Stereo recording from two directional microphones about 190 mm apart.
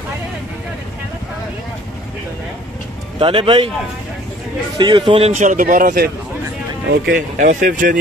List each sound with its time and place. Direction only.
3.2 s speech: 30° right (ahead or behind)
4.7 s a man's voice: 25° right (ahead or behind); by 8.0 s 45° right (ahead or behind)